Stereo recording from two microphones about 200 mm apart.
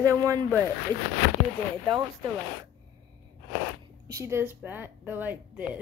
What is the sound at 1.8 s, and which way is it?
Speech, 20° right (ahead or behind).